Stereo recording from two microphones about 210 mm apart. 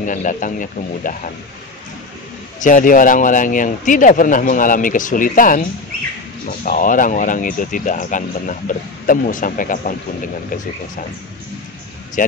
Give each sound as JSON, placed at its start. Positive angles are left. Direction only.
{"t": 0.0, "sound": "speech", "side_deg": 40}
{"t": 2.6, "sound": "speech", "side_deg": 40}